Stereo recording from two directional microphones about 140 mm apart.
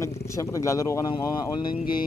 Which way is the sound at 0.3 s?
25° left (ahead or behind).